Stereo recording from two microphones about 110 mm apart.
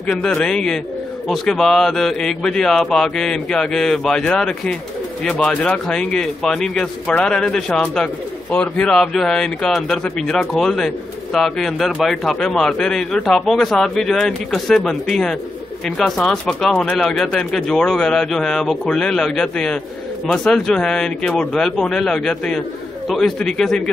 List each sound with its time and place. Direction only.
0.0 s a man's voice: 10° left (ahead or behind)